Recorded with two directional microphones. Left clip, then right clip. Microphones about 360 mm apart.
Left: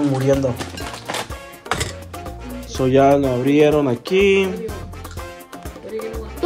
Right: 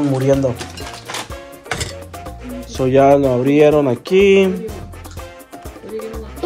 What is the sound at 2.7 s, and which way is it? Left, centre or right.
Music, centre.